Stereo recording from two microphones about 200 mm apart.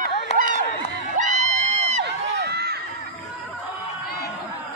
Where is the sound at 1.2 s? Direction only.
35° right (ahead or behind).